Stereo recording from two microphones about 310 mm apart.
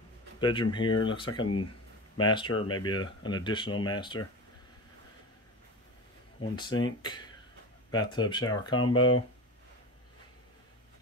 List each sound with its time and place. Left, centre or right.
0.4 s speech: centre
6.5 s speech: centre
8.9 s speech: left